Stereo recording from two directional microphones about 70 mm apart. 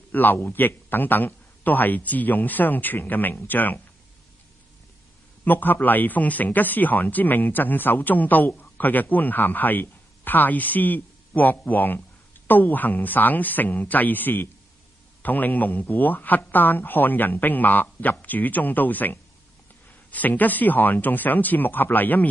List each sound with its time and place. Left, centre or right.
0.1 s speech: left
5.4 s speech: left